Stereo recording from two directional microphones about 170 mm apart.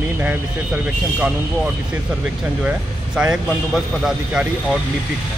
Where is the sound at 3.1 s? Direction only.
5° right (ahead or behind).